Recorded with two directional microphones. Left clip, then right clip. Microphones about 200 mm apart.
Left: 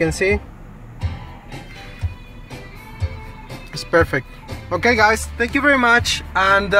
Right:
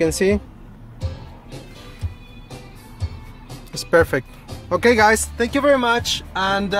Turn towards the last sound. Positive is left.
turn(degrees=-5)  # may be behind; listen again after turning